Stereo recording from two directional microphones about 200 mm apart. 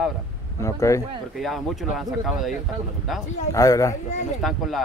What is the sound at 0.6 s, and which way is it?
Speech, 15° left (ahead or behind).